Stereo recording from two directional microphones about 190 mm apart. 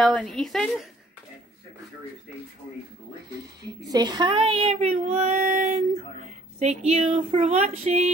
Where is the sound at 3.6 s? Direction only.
20° right (ahead or behind).